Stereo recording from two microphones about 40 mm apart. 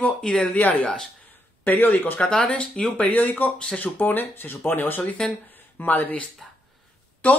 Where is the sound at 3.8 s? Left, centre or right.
Left.